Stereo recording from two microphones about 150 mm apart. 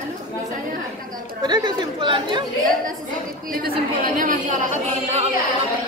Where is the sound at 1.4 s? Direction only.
30° right (ahead or behind).